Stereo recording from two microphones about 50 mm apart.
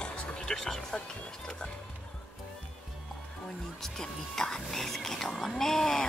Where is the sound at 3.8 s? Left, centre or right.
Centre.